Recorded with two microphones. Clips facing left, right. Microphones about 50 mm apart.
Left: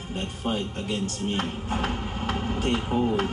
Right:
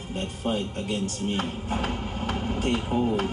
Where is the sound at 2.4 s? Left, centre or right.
Left.